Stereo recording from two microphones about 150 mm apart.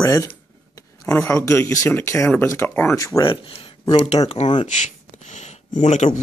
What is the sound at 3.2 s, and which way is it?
Speech, 35° left (ahead or behind).